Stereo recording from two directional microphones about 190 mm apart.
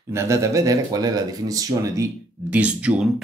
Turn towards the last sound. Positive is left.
turn(degrees=-5)  # may be behind; listen again after turning